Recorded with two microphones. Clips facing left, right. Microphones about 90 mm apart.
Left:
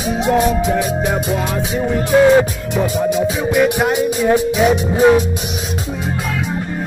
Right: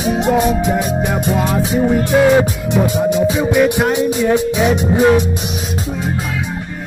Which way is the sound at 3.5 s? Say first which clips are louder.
Left 2 dB; centre (ahead or behind).